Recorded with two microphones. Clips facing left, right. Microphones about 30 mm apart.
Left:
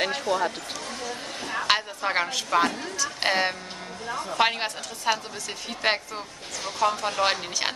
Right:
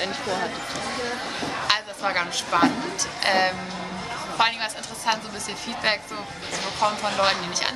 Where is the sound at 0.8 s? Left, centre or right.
Right.